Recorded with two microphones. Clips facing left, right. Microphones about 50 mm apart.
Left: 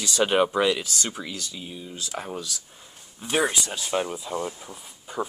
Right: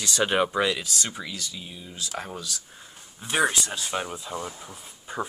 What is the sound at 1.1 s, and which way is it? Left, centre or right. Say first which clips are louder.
Speech: left 1 dB; centre.